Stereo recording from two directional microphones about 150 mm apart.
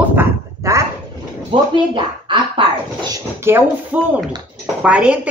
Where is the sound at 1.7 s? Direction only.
35° right (ahead or behind).